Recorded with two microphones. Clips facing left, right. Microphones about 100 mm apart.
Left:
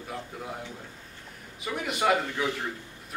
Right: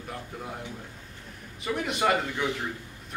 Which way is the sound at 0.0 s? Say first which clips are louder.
Even; centre (ahead or behind).